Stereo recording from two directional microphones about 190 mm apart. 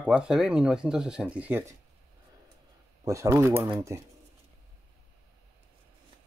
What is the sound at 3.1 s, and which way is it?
Speech, 15° right (ahead or behind).